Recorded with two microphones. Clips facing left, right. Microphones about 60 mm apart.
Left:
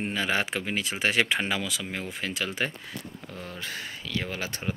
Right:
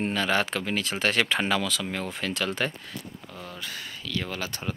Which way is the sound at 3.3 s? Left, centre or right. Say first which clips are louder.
Left 2 dB; right.